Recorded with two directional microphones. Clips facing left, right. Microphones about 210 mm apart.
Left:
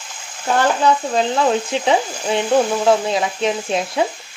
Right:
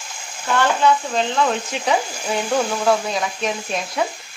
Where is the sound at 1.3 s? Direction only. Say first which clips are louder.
Left 4 dB; 35° left (ahead or behind).